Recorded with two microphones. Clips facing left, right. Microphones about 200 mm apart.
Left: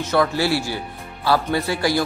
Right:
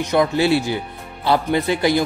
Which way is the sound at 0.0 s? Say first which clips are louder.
Right 2 dB; 15° right (ahead or behind).